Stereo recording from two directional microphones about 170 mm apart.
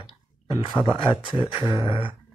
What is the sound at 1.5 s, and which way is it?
Speech, 30° left (ahead or behind).